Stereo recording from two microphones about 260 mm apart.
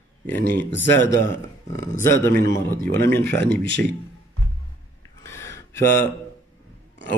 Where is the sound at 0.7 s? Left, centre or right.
Centre.